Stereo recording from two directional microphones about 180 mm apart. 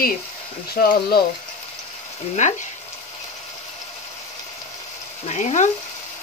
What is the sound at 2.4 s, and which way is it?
Frying, 40° left (ahead or behind).